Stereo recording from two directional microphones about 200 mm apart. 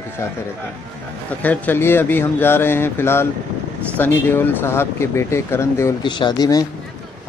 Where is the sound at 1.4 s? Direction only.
10° left (ahead or behind).